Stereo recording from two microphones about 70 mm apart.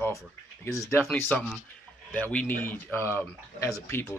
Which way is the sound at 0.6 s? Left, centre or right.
Left.